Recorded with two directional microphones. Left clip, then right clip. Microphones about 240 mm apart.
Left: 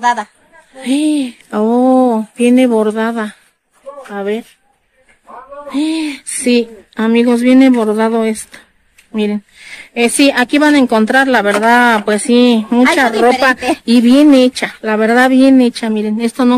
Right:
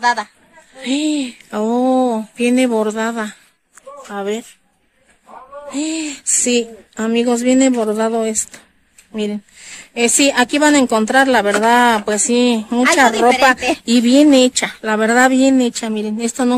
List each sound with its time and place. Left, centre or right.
0.0 s speech: centre
5.7 s speech: centre